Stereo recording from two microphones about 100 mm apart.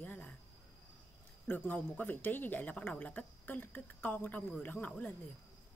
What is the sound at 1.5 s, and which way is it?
Speech, 20° left (ahead or behind).